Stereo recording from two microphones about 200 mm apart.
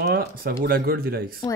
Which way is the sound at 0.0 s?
50° right (ahead or behind).